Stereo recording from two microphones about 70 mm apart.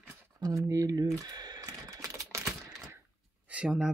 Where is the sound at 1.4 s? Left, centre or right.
Right.